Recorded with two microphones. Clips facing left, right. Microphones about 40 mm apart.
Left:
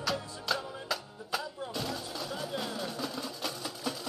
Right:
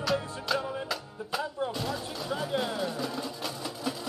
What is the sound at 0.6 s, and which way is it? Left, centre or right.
Music, right.